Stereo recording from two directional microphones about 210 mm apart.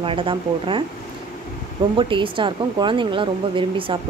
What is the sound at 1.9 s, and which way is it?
Speech, 25° right (ahead or behind).